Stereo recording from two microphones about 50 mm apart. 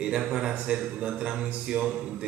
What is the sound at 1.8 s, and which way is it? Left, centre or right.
Speech, centre.